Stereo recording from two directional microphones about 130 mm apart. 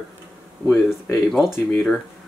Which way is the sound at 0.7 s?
10° left (ahead or behind).